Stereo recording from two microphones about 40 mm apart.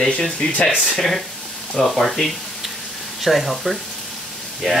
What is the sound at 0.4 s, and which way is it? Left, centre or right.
Speech, centre.